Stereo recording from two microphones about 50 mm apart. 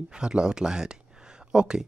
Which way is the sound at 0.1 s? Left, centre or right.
Centre.